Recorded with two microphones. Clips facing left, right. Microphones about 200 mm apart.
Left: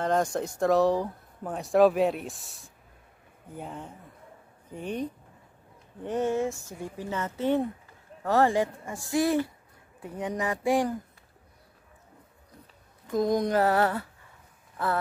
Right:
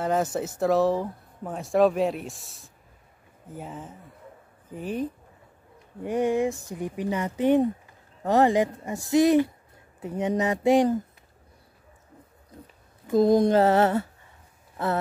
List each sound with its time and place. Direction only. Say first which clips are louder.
0.0 s speech: right 1 dB; 5° right (ahead or behind); by 11.0 s 20° right (ahead or behind)
13.1 s speech: right 6 dB; 30° right (ahead or behind)